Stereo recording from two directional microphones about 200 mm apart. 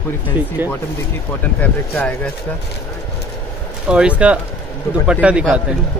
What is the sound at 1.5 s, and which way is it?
Speech, 10° left (ahead or behind).